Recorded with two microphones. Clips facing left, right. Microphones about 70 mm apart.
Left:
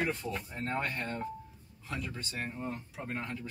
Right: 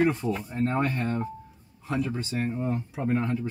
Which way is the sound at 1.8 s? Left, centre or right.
Right.